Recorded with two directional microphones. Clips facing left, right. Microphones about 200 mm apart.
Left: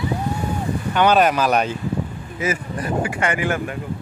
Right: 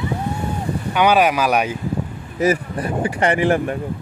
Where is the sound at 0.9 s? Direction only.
10° right (ahead or behind).